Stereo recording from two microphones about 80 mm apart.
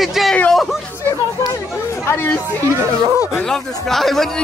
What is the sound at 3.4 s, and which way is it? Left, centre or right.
Speech, centre.